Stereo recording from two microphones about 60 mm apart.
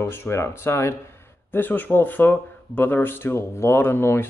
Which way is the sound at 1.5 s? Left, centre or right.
Left.